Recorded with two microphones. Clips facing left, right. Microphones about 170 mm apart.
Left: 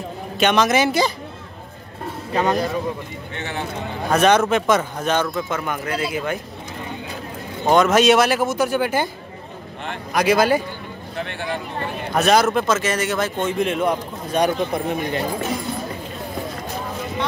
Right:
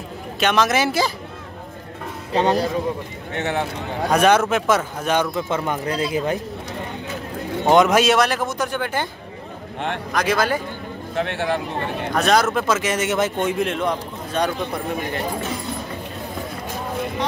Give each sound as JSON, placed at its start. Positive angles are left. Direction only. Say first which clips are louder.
{"t": 0.4, "sound": "speech", "louder": "left 2 dB", "side_deg": 0}
{"t": 2.3, "sound": "speech", "louder": "right 1 dB", "side_deg": -30}
{"t": 3.3, "sound": "speech", "louder": "right 6 dB", "side_deg": -65}
{"t": 4.1, "sound": "speech", "louder": "left 1 dB", "side_deg": -5}
{"t": 5.5, "sound": "speech", "louder": "right 2 dB", "side_deg": -30}
{"t": 7.6, "sound": "speech", "louder": "right 1 dB", "side_deg": -20}
{"t": 8.0, "sound": "a man's voice", "louder": "left 3 dB", "side_deg": 0}
{"t": 10.1, "sound": "a man's voice", "louder": "left 5 dB", "side_deg": 10}
{"t": 11.1, "sound": "speech", "louder": "right 5 dB", "side_deg": -70}
{"t": 12.1, "sound": "speech", "louder": "left 2 dB", "side_deg": 5}
{"t": 12.5, "sound": "speech", "louder": "left 1 dB", "side_deg": -10}
{"t": 13.6, "sound": "a man's voice", "louder": "left 2 dB", "side_deg": 5}